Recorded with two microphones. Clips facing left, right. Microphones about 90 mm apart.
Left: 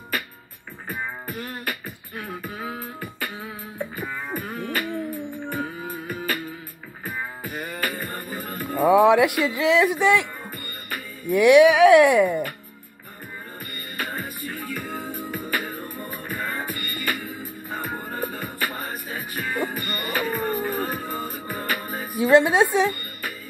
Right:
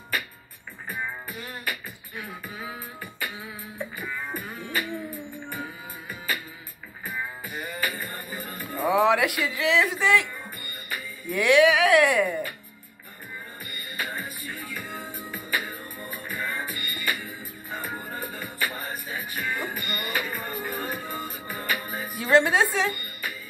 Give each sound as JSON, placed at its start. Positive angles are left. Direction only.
{"t": 0.8, "sound": "beatboxing", "side_deg": 45}
{"t": 5.5, "sound": "music", "side_deg": 45}
{"t": 7.4, "sound": "music", "side_deg": 45}
{"t": 9.0, "sound": "speech", "side_deg": 20}
{"t": 11.2, "sound": "speech", "side_deg": 20}
{"t": 13.9, "sound": "music", "side_deg": 40}
{"t": 22.2, "sound": "speech", "side_deg": 20}